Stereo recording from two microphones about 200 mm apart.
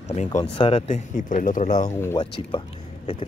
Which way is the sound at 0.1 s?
35° left (ahead or behind).